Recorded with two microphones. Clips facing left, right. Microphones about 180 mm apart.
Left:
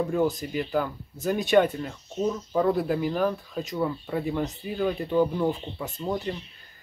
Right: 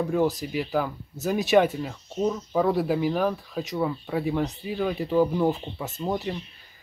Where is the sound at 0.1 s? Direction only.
Centre (ahead or behind).